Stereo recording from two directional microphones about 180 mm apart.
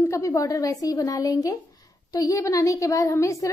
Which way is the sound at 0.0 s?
15° left (ahead or behind).